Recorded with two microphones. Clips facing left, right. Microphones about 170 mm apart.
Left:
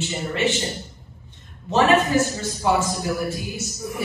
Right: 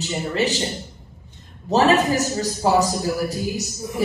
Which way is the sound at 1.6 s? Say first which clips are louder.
Right 1 dB; 35° right (ahead or behind).